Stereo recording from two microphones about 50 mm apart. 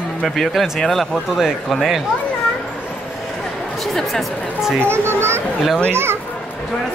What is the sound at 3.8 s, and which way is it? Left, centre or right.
Speech, centre.